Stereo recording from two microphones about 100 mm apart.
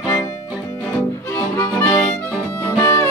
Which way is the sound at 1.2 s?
20° left (ahead or behind).